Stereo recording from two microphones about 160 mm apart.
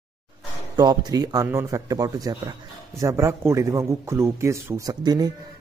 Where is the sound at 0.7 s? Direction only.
25° right (ahead or behind).